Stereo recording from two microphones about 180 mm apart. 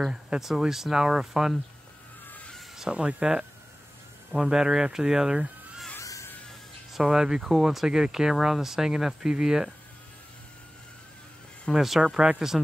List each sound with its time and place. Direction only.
0.0 s speech: 5° right (ahead or behind)
2.2 s a sound: 10° left (ahead or behind)
4.3 s speech: 5° right (ahead or behind)
5.9 s a sound: 15° left (ahead or behind)
6.9 s speech: 5° right (ahead or behind)
11.6 s speech: centre (ahead or behind)